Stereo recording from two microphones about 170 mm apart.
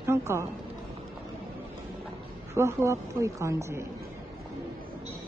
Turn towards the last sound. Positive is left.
turn(degrees=-15)  # may be behind; listen again after turning